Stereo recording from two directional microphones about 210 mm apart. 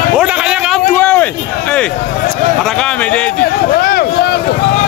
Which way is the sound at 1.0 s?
5° left (ahead or behind).